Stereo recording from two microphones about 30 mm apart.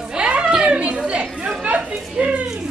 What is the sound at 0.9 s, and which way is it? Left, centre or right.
Chatter, right.